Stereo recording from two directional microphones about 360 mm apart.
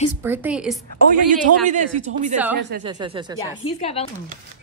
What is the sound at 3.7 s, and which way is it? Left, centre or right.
Speech, centre.